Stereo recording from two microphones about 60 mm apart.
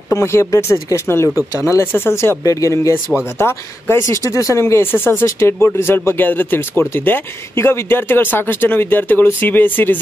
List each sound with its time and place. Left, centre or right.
0.1 s speech: left
2.4 s speech: left
3.3 s speech: left
4.2 s speech: left
4.9 s speech: left